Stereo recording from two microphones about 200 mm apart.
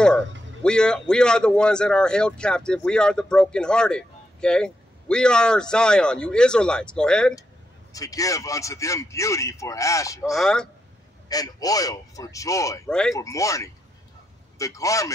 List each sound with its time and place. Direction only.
0.6 s speech: 5° left (ahead or behind)
7.9 s a man's voice: 15° left (ahead or behind)
10.3 s speech: 5° left (ahead or behind)
11.2 s a man's voice: 20° left (ahead or behind)